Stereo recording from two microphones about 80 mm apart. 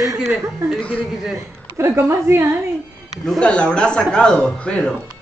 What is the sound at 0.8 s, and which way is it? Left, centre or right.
Speech, centre.